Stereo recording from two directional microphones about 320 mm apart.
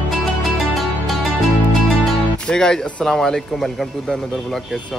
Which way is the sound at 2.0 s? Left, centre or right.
Centre.